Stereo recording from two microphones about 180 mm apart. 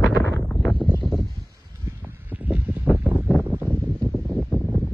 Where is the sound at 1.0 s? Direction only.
Centre (ahead or behind).